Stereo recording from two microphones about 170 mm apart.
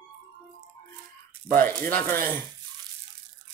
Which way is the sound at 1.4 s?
10° left (ahead or behind).